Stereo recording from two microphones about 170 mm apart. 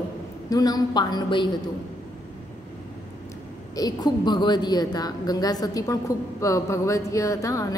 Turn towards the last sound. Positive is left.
turn(degrees=20)  # may be behind; listen again after turning